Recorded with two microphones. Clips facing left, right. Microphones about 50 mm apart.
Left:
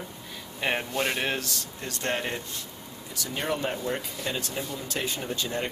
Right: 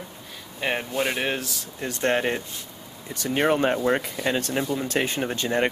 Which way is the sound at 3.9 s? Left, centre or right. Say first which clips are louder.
Right 8 dB; right.